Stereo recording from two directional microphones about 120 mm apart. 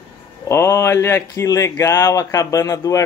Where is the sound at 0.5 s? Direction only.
25° left (ahead or behind).